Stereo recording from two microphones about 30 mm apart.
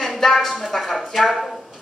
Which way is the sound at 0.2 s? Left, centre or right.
Centre.